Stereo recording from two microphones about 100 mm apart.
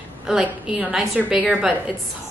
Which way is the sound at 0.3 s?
5° right (ahead or behind).